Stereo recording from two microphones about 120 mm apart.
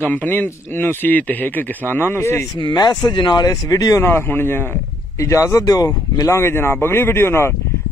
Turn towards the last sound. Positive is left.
turn(degrees=20)  # may be behind; listen again after turning